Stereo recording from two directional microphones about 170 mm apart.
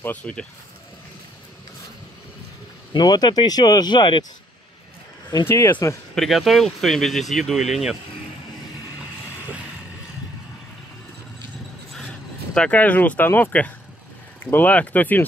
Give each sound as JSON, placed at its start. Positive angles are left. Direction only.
{"t": 0.0, "sound": "speech", "side_deg": 10}
{"t": 2.9, "sound": "speech", "side_deg": 25}
{"t": 5.5, "sound": "speech", "side_deg": 15}
{"t": 6.1, "sound": "speech", "side_deg": 0}
{"t": 12.5, "sound": "speech", "side_deg": 5}